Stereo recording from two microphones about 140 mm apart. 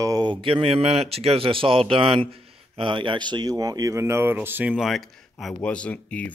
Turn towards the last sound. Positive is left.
turn(degrees=10)  # may be behind; listen again after turning